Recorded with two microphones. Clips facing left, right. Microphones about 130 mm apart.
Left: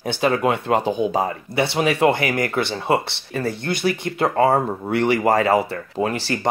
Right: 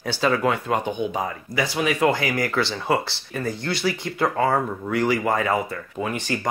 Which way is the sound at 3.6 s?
55° left (ahead or behind).